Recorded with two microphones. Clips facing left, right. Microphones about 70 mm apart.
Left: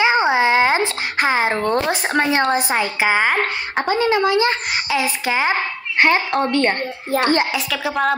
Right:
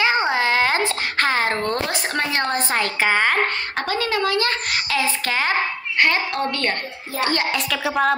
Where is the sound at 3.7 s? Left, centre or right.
Left.